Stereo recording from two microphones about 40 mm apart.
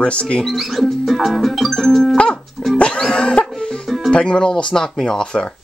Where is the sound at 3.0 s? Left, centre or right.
Left.